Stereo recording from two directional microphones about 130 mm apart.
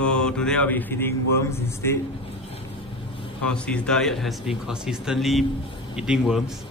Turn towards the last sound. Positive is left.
turn(degrees=-5)  # may be behind; listen again after turning